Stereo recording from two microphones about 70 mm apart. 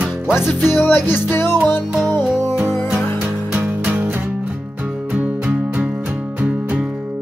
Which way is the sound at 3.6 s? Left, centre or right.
Right.